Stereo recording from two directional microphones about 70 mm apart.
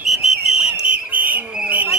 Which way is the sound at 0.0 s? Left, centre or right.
Centre.